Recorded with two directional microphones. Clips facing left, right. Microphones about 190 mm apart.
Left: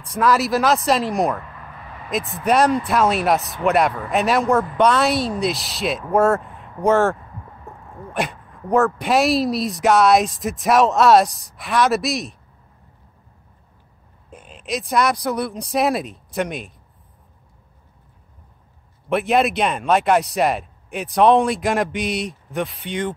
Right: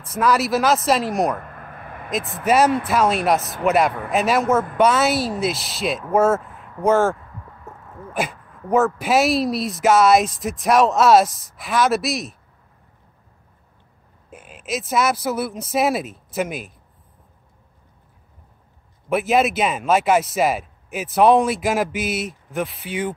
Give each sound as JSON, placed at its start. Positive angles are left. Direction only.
{"t": 0.0, "sound": "speech", "side_deg": 0}
{"t": 1.4, "sound": "a sound", "side_deg": -50}
{"t": 2.0, "sound": "speech", "side_deg": 0}
{"t": 14.3, "sound": "speech", "side_deg": -5}
{"t": 19.0, "sound": "speech", "side_deg": 0}